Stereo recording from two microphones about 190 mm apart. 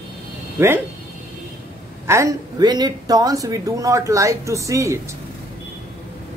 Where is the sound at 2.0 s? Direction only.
15° right (ahead or behind).